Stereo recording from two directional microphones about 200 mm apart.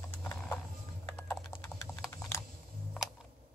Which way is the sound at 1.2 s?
10° left (ahead or behind).